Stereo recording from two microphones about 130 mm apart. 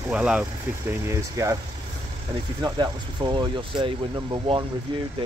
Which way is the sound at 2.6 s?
35° right (ahead or behind).